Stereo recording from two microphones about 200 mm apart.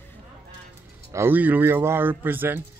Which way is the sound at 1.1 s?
10° right (ahead or behind).